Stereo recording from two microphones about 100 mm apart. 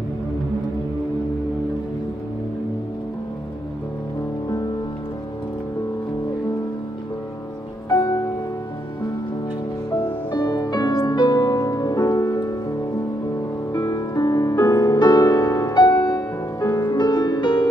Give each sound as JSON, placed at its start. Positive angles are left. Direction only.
{"t": 9.9, "sound": "music", "side_deg": 50}
{"t": 13.7, "sound": "music", "side_deg": 40}
{"t": 16.8, "sound": "music", "side_deg": 50}